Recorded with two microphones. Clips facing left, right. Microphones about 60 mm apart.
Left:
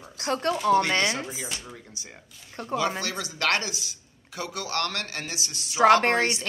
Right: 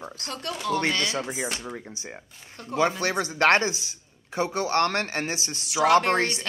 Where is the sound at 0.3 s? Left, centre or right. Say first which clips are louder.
Left 7 dB; left.